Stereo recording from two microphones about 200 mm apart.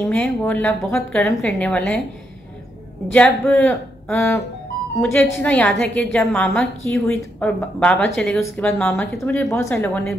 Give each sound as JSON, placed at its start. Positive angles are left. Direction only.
{"t": 0.0, "sound": "speech", "side_deg": 10}
{"t": 3.1, "sound": "speech", "side_deg": 10}